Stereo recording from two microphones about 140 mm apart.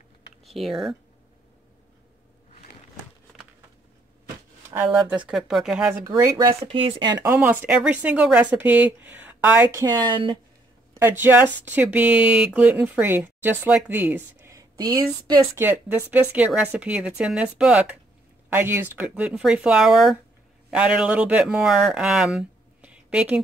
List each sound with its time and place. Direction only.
0.5 s speech: centre (ahead or behind)
4.9 s speech: 10° right (ahead or behind)
5.9 s speech: 20° right (ahead or behind)
6.5 s speech: 40° right (ahead or behind)
7.4 s speech: 10° right (ahead or behind)
9.8 s speech: 30° right (ahead or behind)
11.0 s speech: 15° right (ahead or behind)
15.5 s speech: 15° right (ahead or behind)